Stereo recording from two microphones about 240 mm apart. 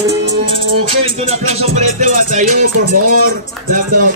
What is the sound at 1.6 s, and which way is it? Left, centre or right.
Music, right.